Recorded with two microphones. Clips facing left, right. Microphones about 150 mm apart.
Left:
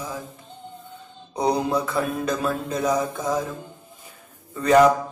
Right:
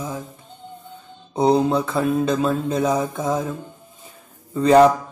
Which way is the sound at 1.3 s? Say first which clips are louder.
Right 5 dB; 25° right (ahead or behind).